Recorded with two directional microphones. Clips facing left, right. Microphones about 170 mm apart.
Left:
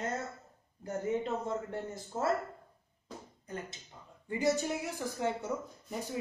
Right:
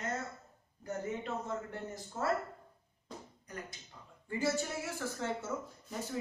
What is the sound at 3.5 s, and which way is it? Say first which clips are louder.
Speech: left 4 dB; 25° left (ahead or behind).